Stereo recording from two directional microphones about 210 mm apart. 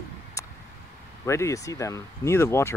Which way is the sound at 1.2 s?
15° left (ahead or behind).